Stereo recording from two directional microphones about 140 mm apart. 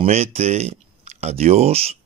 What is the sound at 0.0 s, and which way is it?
Speech, 50° right (ahead or behind).